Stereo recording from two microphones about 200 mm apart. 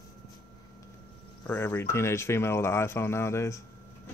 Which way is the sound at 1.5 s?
10° left (ahead or behind).